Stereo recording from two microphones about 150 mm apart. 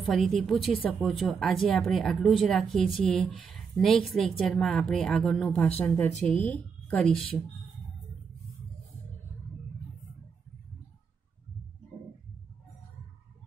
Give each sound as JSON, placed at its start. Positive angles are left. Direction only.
{"t": 0.0, "sound": "speech", "side_deg": 0}